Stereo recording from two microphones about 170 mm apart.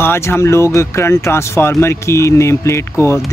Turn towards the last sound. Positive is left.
turn(degrees=15)  # may be behind; listen again after turning